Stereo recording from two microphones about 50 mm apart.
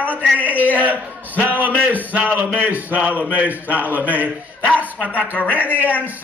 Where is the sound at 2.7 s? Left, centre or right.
Right.